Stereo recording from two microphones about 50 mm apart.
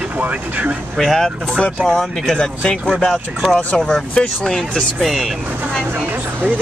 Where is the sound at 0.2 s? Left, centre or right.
Right.